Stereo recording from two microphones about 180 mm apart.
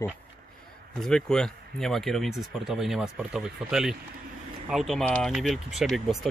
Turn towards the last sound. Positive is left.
turn(degrees=0)  # may be behind; listen again after turning